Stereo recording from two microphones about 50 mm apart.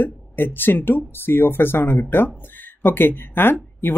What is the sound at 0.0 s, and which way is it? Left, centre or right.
Speech, left.